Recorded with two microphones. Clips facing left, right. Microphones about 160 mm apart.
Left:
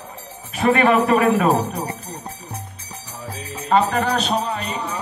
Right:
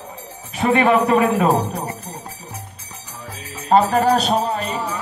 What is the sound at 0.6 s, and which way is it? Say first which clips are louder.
Speech: even; 20° right (ahead or behind).